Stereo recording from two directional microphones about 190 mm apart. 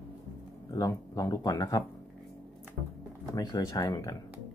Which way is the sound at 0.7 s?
20° left (ahead or behind).